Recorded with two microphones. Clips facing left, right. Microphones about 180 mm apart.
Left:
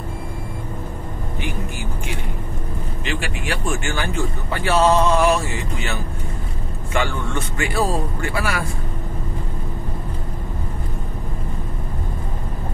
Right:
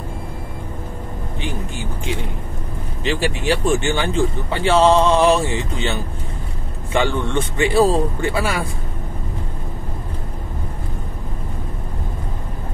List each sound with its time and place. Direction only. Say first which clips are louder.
3.0 s speech: right 7 dB; 30° right (ahead or behind)
3.7 s speech: right 5 dB; 20° right (ahead or behind)
8.2 s speech: right 3 dB; 20° right (ahead or behind)